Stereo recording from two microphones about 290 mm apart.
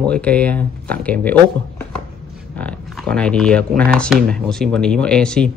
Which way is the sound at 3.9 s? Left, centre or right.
Centre.